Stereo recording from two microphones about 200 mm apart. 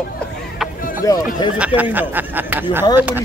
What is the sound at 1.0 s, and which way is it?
Speech, 15° left (ahead or behind).